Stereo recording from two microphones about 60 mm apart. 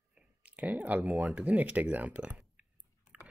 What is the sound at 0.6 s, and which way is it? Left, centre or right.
Speech, right.